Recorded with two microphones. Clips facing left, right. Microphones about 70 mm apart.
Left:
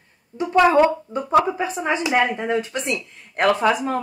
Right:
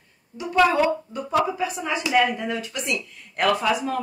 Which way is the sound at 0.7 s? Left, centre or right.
Left.